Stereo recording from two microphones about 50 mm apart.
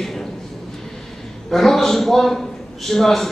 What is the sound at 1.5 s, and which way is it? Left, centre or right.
A man's voice, centre.